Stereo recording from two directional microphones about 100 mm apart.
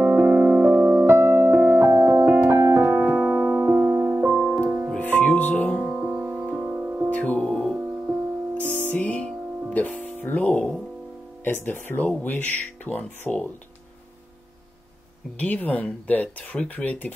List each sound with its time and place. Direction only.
0.0 s music: 20° right (ahead or behind)
3.0 s music: 10° right (ahead or behind)
3.6 s keyboard: 25° right (ahead or behind)
4.9 s music: 15° left (ahead or behind)
5.9 s music: 20° right (ahead or behind)
7.1 s music: 15° left (ahead or behind)
7.7 s music: 20° right (ahead or behind)
8.5 s music: 15° left (ahead or behind)
11.4 s speech: 20° left (ahead or behind)
15.3 s speech: 15° left (ahead or behind)